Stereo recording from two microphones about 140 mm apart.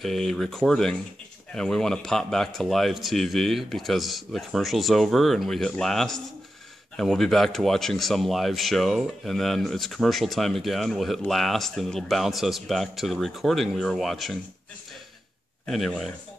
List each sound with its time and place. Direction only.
0.0 s speech: centre (ahead or behind)
15.6 s speech: 5° left (ahead or behind)